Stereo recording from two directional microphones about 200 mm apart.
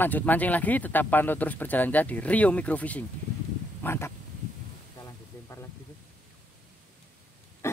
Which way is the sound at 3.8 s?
10° left (ahead or behind).